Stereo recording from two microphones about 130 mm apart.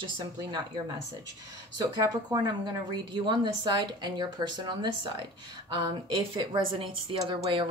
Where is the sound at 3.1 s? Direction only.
35° right (ahead or behind).